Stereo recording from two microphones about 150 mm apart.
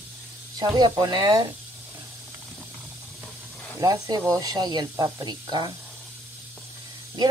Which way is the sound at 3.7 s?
20° right (ahead or behind).